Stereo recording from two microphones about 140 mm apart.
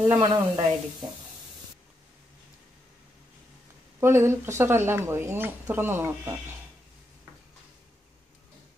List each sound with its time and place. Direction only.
0.1 s speech: 35° right (ahead or behind)
4.0 s speech: 20° right (ahead or behind)